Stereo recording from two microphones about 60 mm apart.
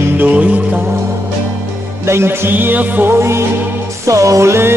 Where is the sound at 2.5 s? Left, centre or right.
Right.